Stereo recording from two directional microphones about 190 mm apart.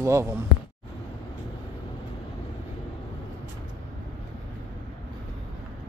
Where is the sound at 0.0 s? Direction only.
15° right (ahead or behind).